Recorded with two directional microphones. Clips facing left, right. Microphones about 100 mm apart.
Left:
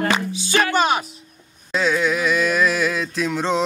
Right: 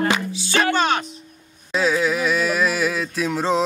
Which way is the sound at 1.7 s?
Centre (ahead or behind).